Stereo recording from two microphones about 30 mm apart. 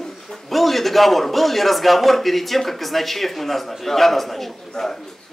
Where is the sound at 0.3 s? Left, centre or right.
Centre.